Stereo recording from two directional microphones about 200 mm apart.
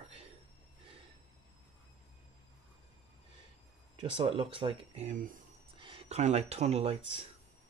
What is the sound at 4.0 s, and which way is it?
Speech, 25° right (ahead or behind).